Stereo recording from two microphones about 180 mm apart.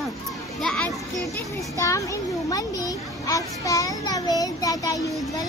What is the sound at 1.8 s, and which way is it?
A child's voice, 15° left (ahead or behind).